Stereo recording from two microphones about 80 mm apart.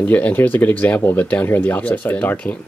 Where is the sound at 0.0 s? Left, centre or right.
Left.